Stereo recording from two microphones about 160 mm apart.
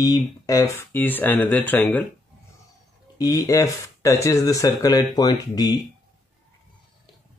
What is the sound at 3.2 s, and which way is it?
Speech, 20° left (ahead or behind).